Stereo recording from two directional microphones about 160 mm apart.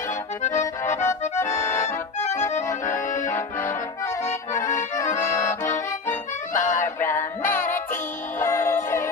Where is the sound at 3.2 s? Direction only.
20° left (ahead or behind).